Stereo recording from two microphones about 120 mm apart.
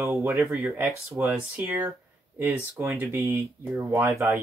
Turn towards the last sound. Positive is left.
turn(degrees=-20)  # may be behind; listen again after turning